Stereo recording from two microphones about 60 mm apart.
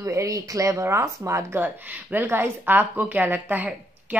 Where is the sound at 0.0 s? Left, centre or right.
Right.